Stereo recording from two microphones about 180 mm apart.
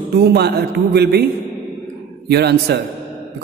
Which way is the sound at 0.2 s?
60° right (ahead or behind).